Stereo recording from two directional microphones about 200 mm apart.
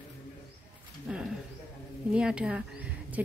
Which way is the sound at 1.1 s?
5° right (ahead or behind).